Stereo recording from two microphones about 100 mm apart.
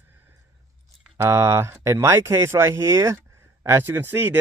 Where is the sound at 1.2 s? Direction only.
25° right (ahead or behind).